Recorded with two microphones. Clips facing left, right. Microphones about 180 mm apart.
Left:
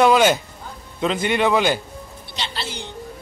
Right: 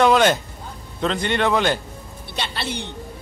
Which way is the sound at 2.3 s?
60° right (ahead or behind).